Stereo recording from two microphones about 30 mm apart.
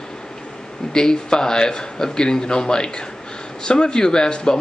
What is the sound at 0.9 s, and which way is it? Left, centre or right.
Speech, left.